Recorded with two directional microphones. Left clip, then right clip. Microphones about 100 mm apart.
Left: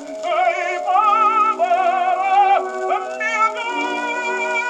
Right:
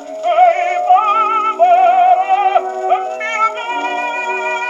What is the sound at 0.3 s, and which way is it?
Music, 35° left (ahead or behind).